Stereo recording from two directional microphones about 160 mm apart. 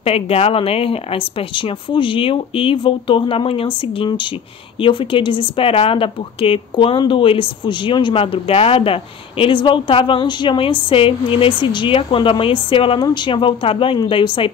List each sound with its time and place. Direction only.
0.0 s speech: 40° left (ahead or behind)